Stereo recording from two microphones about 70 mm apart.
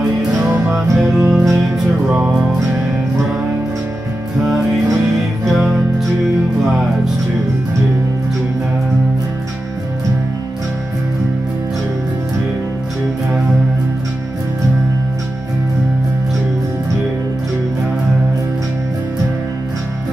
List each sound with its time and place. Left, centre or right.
0.4 s music: right
0.9 s music: centre
2.0 s music: right
5.4 s music: centre